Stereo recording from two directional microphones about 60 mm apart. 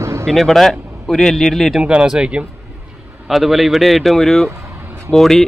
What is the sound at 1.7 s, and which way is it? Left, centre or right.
Speech, centre.